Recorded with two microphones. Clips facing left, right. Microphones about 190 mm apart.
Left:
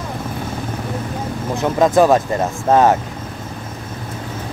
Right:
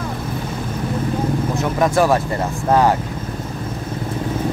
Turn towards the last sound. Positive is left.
turn(degrees=20)  # may be behind; listen again after turning